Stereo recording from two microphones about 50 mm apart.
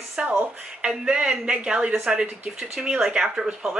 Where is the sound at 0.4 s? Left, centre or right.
Right.